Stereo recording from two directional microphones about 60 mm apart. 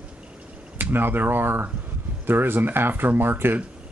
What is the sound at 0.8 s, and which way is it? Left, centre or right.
Speech, right.